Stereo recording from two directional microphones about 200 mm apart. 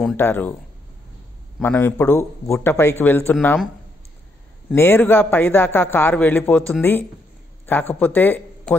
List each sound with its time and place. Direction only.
0.0 s a man's voice: 10° left (ahead or behind)
1.6 s a man's voice: 10° left (ahead or behind)
4.7 s a man's voice: 10° left (ahead or behind)